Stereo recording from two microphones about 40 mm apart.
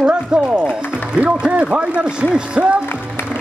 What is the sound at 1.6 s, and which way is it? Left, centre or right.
Speech, right.